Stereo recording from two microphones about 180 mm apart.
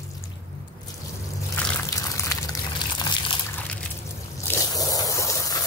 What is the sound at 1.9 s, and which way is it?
Water, 20° left (ahead or behind).